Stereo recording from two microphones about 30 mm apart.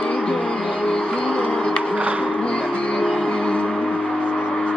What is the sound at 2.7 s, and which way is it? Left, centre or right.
Music, left.